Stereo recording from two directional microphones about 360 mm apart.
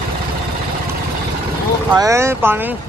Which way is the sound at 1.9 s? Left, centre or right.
Centre.